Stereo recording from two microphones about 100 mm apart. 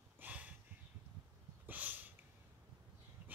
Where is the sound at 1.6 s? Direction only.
20° right (ahead or behind).